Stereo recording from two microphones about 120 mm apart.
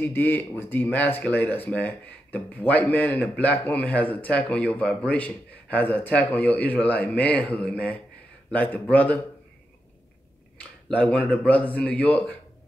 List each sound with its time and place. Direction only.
0.0 s speech: 15° left (ahead or behind)
10.9 s speech: 10° left (ahead or behind)